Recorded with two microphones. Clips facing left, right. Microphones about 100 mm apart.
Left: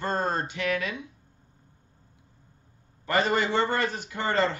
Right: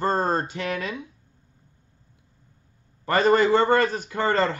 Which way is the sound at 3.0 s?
40° right (ahead or behind).